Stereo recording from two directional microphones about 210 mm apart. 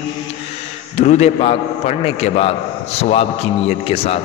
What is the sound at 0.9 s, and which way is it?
A man's voice, 35° left (ahead or behind).